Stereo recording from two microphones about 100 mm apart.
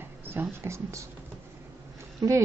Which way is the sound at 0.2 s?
20° right (ahead or behind).